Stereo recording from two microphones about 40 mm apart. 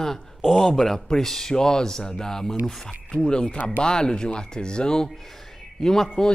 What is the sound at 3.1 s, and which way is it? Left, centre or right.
Speech, left.